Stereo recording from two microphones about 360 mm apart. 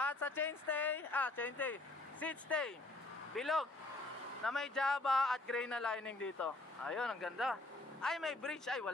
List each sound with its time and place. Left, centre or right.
0.0 s speech: centre